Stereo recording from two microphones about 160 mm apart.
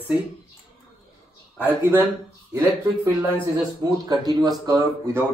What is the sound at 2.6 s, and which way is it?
Speech, 15° right (ahead or behind).